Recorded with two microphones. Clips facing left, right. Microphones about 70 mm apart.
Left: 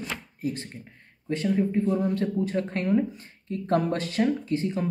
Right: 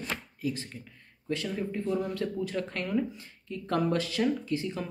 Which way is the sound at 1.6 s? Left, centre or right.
Left.